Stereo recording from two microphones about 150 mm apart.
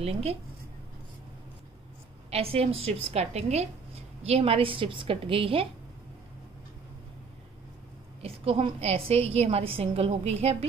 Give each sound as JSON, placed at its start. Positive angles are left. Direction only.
{"t": 0.0, "sound": "a woman's voice", "side_deg": -45}
{"t": 2.3, "sound": "a woman's voice", "side_deg": -40}
{"t": 8.2, "sound": "a woman's voice", "side_deg": -40}